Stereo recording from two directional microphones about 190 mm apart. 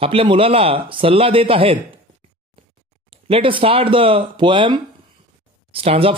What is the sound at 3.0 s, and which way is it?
Speech, 30° right (ahead or behind).